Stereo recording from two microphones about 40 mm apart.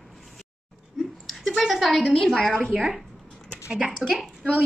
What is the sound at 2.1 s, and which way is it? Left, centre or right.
Speech, centre.